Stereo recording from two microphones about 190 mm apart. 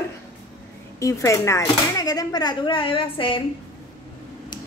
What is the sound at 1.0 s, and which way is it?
Speech, 15° left (ahead or behind).